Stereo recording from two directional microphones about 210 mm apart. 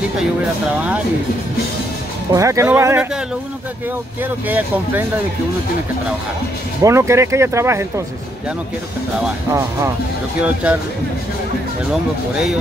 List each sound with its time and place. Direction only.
2.3 s speech: 15° right (ahead or behind)
4.2 s speech: 10° right (ahead or behind)
6.8 s speech: 15° right (ahead or behind)
10.4 s speech: 5° right (ahead or behind)
11.9 s speech: 5° right (ahead or behind)